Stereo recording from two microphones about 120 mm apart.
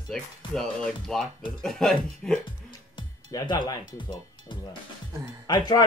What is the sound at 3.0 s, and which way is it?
Speech, 40° left (ahead or behind).